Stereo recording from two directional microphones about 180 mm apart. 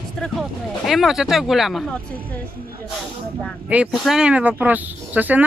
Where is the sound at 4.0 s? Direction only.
5° right (ahead or behind).